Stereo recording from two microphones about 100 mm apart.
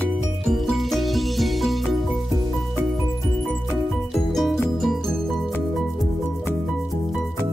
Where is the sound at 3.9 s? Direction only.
Centre (ahead or behind).